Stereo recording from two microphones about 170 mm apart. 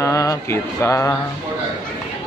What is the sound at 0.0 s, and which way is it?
Mantra, 20° left (ahead or behind).